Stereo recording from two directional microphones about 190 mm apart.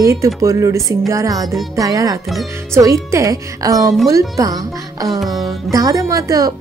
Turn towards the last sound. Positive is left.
turn(degrees=-20)  # may be behind; listen again after turning